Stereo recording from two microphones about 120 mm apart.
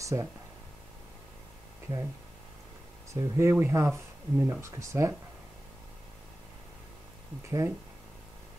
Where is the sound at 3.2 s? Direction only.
25° right (ahead or behind).